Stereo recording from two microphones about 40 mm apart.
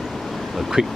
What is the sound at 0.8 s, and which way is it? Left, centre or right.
Speech, centre.